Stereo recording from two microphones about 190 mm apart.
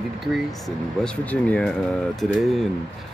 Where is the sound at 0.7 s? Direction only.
5° left (ahead or behind).